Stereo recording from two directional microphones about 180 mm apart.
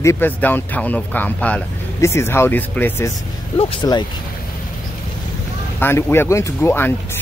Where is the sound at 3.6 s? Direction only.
30° left (ahead or behind).